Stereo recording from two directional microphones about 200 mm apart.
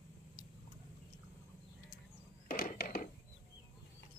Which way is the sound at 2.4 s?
45° left (ahead or behind).